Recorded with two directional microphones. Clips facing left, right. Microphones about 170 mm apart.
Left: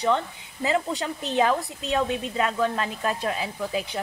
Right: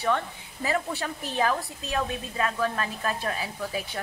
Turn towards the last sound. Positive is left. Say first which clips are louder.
# left 4 dB
turn(degrees=20)  # may be behind; listen again after turning